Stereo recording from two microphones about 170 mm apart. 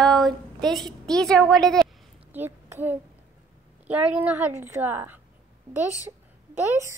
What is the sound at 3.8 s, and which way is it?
A woman's voice, 10° right (ahead or behind).